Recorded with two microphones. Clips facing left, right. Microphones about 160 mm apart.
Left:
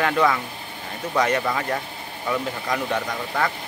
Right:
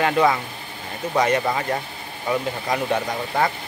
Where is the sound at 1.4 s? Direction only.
15° right (ahead or behind).